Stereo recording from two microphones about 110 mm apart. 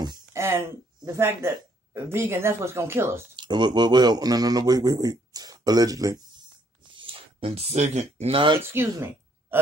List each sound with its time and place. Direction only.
0.3 s speech: 25° right (ahead or behind)
3.3 s speech: 45° right (ahead or behind)
6.9 s speech: 50° right (ahead or behind); by 8.4 s 85° right
8.8 s speech: 35° right (ahead or behind)